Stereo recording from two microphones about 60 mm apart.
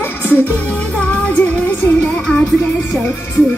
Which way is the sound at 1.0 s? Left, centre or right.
Left.